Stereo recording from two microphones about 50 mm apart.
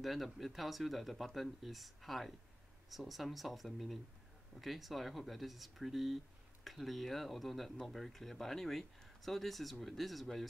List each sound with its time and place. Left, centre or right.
0.0 s speech: centre